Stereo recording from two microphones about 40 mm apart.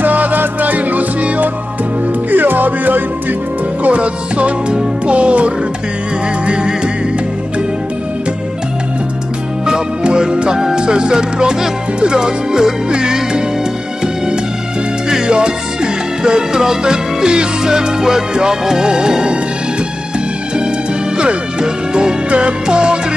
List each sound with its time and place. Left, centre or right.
0.0 s music: right
2.3 s music: right
3.8 s music: right
9.7 s speech: centre
15.0 s music: centre
21.2 s speech: right